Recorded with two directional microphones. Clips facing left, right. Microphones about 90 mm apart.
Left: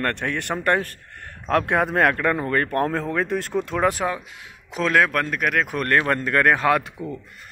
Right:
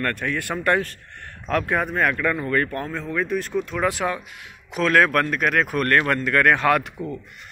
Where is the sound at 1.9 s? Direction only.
60° left (ahead or behind).